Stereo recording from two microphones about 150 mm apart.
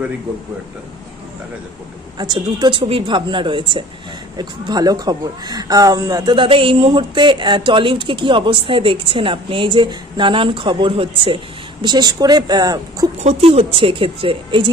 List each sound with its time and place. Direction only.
2.1 s speech: 30° right (ahead or behind)
13.2 s speech: 45° right (ahead or behind)